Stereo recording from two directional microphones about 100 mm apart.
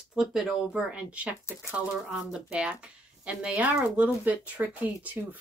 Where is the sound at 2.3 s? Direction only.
10° right (ahead or behind).